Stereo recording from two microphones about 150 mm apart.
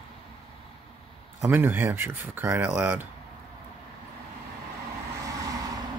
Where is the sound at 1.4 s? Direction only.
15° right (ahead or behind).